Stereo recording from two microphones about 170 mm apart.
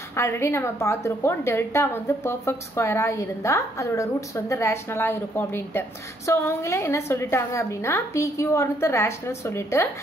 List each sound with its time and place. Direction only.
0.1 s a woman's voice: 15° left (ahead or behind)